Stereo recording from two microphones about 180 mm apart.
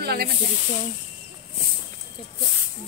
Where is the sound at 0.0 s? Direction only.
60° right (ahead or behind).